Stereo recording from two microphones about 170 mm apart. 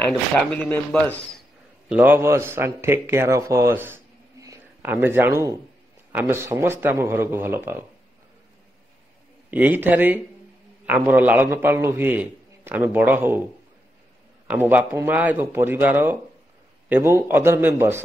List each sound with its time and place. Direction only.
0.5 s speech: 10° left (ahead or behind)
1.9 s a man's voice: 10° right (ahead or behind)
9.5 s a man's voice: 10° right (ahead or behind)
14.5 s a man's voice: 10° right (ahead or behind)